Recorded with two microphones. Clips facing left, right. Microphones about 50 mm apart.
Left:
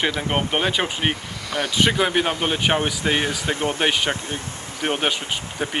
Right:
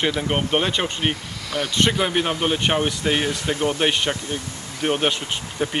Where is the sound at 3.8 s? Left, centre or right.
Centre.